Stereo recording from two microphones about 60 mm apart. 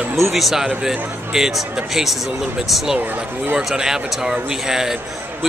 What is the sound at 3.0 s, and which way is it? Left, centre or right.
Speech, right.